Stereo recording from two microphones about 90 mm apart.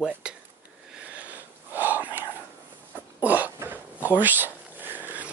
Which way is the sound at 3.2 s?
20° right (ahead or behind).